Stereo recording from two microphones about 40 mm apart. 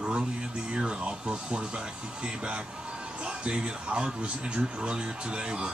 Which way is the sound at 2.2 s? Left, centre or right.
Right.